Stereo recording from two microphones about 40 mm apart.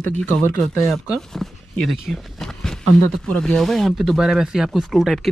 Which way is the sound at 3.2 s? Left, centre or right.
Left.